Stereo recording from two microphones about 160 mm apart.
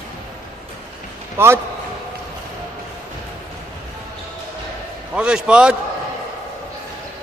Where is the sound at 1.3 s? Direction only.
15° right (ahead or behind).